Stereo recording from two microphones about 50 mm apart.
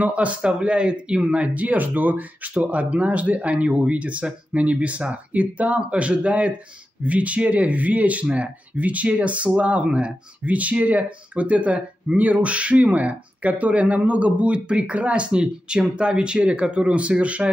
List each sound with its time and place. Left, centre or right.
0.0 s speech: right